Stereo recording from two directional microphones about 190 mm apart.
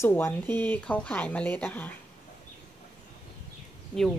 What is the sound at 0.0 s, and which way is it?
Speech, 10° left (ahead or behind).